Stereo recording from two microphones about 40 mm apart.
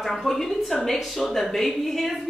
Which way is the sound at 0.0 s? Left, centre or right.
Centre.